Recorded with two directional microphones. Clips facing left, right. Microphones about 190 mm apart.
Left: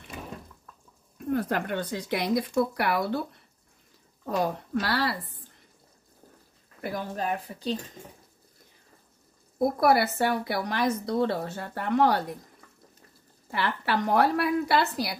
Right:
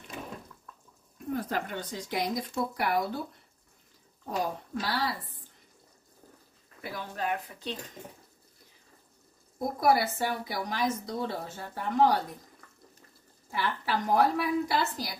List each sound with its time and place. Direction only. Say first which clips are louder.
1.3 s speech: left 5 dB; 65° left (ahead or behind)
4.4 s speech: left 4 dB; 70° left (ahead or behind)
6.8 s speech: left 4 dB; 40° left (ahead or behind)
9.8 s speech: left 1 dB; 65° left (ahead or behind)
13.5 s speech: left 3 dB; 70° left (ahead or behind)